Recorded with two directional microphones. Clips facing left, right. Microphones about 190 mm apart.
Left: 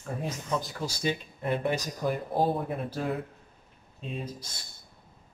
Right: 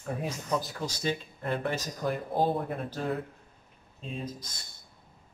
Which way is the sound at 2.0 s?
Centre (ahead or behind).